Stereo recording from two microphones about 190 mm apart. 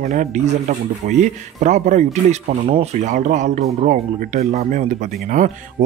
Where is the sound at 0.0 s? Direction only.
40° right (ahead or behind).